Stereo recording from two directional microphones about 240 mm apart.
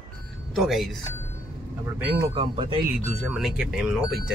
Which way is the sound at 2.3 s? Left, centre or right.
Right.